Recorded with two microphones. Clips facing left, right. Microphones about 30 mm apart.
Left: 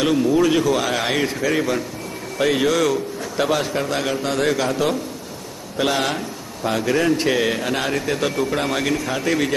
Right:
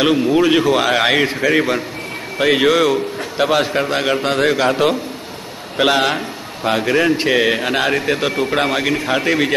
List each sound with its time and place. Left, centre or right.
0.0 s a man's voice: right